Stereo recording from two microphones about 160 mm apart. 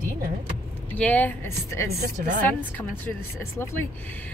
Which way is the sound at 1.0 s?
10° left (ahead or behind).